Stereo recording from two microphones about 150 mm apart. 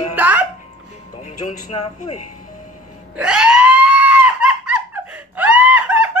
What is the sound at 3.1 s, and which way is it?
Screaming, 5° right (ahead or behind).